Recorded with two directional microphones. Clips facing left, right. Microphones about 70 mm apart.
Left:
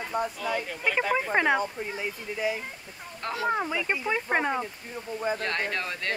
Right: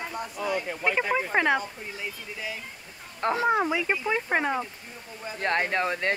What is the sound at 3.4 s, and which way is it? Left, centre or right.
Speech, centre.